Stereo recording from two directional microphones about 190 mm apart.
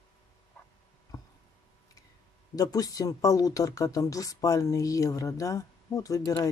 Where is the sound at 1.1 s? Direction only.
20° left (ahead or behind).